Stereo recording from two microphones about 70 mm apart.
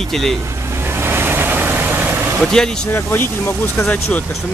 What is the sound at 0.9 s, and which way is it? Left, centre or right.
Vehicle, right.